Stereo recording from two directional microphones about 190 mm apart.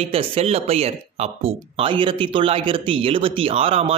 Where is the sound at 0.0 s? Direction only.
30° right (ahead or behind).